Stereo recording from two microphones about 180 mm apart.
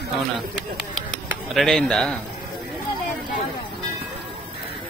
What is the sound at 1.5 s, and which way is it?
Speech, centre (ahead or behind).